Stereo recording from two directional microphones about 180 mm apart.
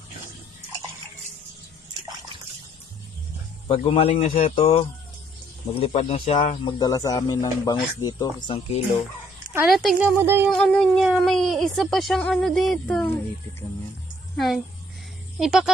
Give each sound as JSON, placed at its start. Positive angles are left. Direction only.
{"t": 3.6, "sound": "speech", "side_deg": 30}
{"t": 9.7, "sound": "speech", "side_deg": 0}
{"t": 10.5, "sound": "speech", "side_deg": 5}
{"t": 14.3, "sound": "a woman's voice", "side_deg": 0}